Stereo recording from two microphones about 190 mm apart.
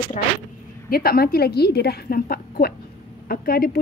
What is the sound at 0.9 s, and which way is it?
A woman's voice, 50° left (ahead or behind).